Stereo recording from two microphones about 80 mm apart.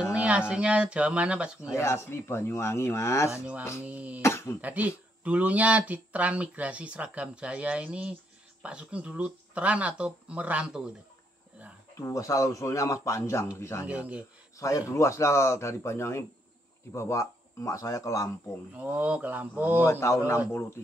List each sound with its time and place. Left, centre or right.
0.0 s speech: centre
1.7 s speech: left
3.8 s speech: centre
4.2 s speech: left
4.6 s speech: centre
12.0 s speech: left
13.8 s speech: centre
14.6 s speech: left
18.8 s speech: centre
19.8 s speech: left